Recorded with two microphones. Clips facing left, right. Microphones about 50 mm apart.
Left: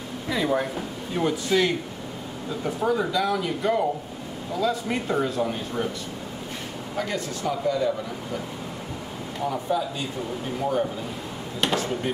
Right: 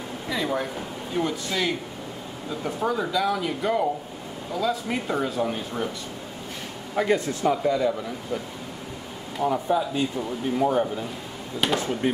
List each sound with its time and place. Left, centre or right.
0.3 s speech: centre
7.0 s speech: right
7.6 s speech: centre
9.5 s speech: centre